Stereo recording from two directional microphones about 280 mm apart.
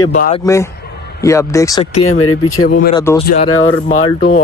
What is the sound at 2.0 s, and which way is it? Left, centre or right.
Speech, left.